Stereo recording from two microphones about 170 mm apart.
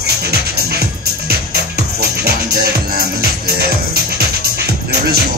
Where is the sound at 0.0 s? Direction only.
70° right (ahead or behind).